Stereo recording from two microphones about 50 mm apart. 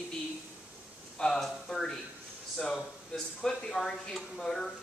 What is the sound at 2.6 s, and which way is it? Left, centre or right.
Speech, centre.